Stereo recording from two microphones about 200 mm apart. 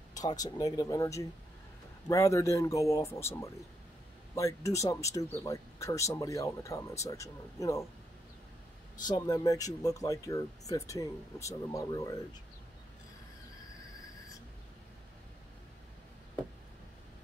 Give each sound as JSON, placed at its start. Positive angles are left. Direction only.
{"t": 0.1, "sound": "speech", "side_deg": 20}
{"t": 9.0, "sound": "speech", "side_deg": 20}